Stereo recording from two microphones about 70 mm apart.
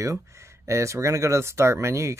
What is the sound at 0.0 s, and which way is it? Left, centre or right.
Speech, right.